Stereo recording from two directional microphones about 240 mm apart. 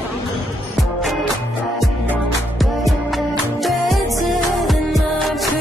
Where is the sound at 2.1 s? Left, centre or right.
Centre.